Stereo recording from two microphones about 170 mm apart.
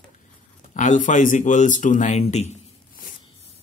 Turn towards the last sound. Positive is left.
turn(degrees=45)  # may be behind; listen again after turning